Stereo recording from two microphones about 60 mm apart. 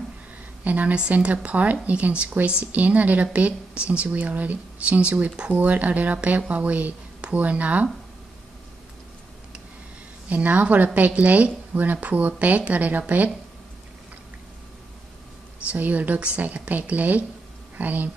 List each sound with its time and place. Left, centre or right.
0.7 s speech: right
10.3 s speech: right
15.7 s speech: right